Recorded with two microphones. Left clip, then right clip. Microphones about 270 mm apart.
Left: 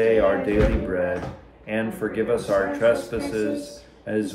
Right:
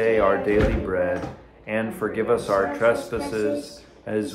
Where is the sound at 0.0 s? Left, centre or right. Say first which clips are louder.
Left 1 dB; right.